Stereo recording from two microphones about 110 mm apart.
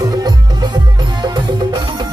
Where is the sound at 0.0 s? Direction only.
40° right (ahead or behind).